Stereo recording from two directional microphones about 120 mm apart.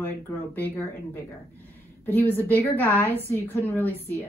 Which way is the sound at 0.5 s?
15° left (ahead or behind).